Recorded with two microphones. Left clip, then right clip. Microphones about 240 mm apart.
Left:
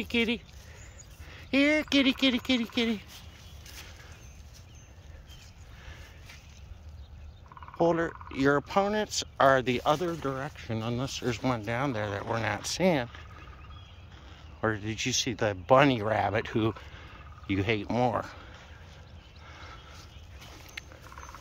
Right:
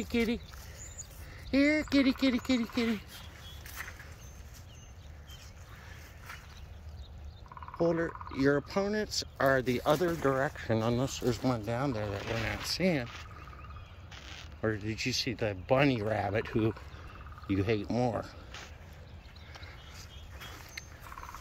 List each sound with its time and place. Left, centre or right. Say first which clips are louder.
0.0 s speech: left 3 dB; centre
7.8 s speech: left 4 dB; centre
14.1 s a sound: right 8 dB; right
14.6 s speech: left 3 dB; centre